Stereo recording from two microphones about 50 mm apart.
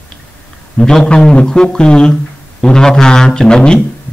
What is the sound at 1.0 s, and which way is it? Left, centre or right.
Speech, centre.